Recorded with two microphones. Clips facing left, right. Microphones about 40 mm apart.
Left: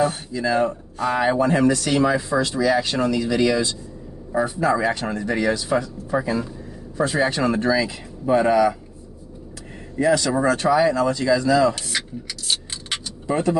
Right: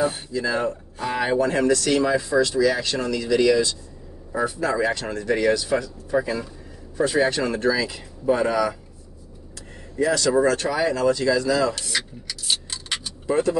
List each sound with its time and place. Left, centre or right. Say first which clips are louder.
0.3 s speech: left 3 dB; centre
4.6 s speech: left 3 dB; centre
9.9 s speech: left 1 dB; centre
13.3 s speech: even; centre